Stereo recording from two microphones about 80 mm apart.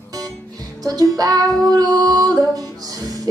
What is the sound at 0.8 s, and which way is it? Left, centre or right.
Music, right.